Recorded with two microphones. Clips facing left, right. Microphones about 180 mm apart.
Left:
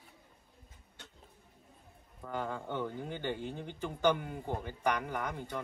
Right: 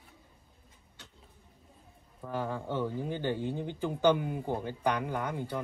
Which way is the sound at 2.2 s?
10° right (ahead or behind).